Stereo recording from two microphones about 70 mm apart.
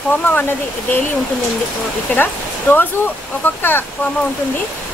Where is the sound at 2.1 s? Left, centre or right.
Left.